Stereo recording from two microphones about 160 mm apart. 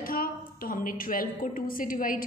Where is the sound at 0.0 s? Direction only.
65° left (ahead or behind).